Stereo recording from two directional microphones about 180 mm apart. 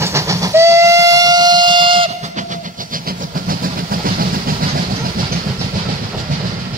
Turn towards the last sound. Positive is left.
turn(degrees=-55)  # may be behind; listen again after turning